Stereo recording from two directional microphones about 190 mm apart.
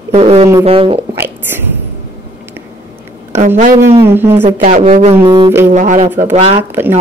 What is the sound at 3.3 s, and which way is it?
Speech, 40° right (ahead or behind).